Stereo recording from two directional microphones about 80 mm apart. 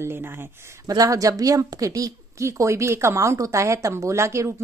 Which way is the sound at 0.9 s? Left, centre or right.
Right.